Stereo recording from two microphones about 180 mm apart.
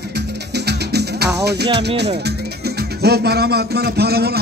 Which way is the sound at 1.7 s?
70° right (ahead or behind).